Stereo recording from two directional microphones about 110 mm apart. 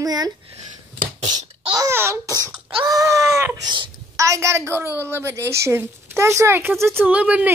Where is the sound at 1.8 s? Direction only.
25° right (ahead or behind).